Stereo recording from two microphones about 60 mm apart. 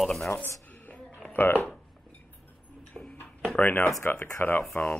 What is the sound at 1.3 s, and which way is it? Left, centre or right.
Speech, left.